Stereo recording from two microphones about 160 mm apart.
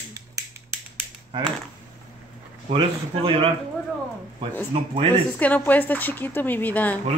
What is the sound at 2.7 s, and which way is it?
Speech, 35° right (ahead or behind).